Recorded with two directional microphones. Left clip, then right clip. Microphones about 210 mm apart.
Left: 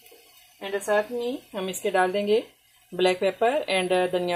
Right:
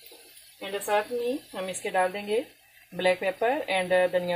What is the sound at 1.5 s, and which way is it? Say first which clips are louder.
Speech: left 7 dB; 40° left (ahead or behind).